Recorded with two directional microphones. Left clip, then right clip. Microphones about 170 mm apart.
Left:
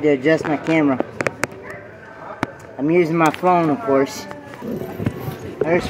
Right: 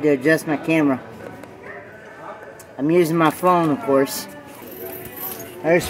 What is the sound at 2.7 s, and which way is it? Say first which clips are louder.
A man's voice: even; 25° right (ahead or behind).